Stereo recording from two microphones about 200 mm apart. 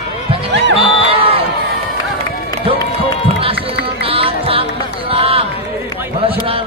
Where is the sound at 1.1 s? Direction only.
30° right (ahead or behind).